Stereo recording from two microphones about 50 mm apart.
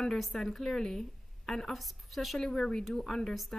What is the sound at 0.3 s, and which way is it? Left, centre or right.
A woman's voice, centre.